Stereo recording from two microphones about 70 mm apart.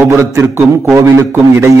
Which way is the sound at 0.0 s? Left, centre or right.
Right.